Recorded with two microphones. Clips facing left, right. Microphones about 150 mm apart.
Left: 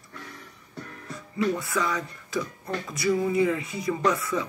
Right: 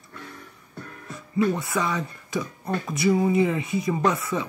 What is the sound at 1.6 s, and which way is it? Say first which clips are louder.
Speech: right 2 dB; 20° right (ahead or behind).